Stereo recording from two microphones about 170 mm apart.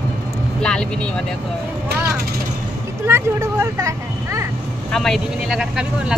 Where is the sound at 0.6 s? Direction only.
5° left (ahead or behind).